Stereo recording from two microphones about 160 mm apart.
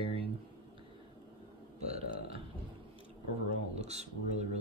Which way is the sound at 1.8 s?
40° right (ahead or behind).